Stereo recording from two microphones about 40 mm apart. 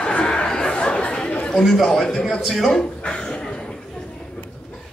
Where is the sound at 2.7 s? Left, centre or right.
Centre.